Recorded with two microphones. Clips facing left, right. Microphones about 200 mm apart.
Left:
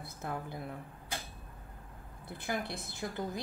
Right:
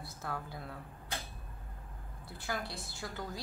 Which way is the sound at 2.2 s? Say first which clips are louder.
Left 3 dB; 20° left (ahead or behind).